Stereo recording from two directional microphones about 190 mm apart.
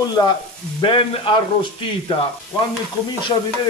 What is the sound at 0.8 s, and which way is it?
Speech, 25° left (ahead or behind).